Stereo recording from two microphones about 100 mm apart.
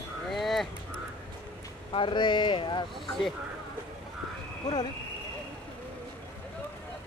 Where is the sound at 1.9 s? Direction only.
50° left (ahead or behind).